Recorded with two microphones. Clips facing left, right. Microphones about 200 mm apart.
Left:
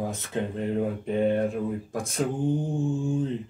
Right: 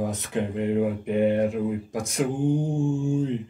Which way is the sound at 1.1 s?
70° right (ahead or behind).